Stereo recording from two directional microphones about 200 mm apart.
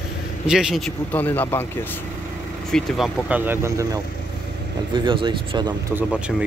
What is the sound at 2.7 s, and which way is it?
Speech, centre (ahead or behind).